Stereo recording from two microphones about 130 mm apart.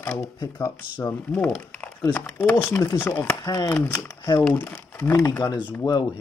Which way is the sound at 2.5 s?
20° left (ahead or behind).